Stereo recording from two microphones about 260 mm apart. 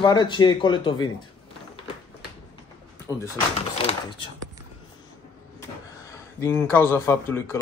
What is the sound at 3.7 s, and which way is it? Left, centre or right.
Speech, left.